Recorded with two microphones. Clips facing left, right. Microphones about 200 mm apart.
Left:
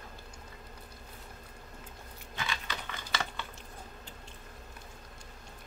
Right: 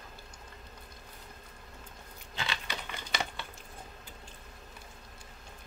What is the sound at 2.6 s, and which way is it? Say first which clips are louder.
Crumpling: even; 15° right (ahead or behind).